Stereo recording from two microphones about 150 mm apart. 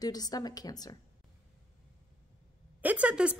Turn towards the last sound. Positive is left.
turn(degrees=-10)  # may be behind; listen again after turning